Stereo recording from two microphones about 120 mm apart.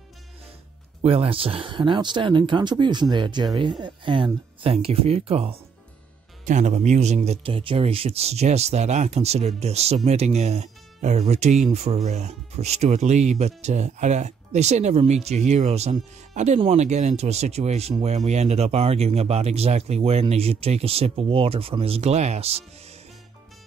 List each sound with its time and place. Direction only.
1.0 s speech: 55° right (ahead or behind)
6.4 s speech: 80° right
7.4 s speech: 50° right (ahead or behind)